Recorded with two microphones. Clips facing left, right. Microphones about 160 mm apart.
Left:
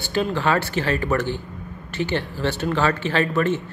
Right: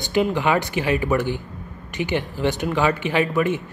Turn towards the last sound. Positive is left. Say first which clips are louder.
# even
turn(degrees=-10)  # may be behind; listen again after turning